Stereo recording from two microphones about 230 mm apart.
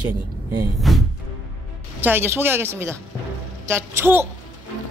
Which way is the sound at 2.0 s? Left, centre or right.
Centre.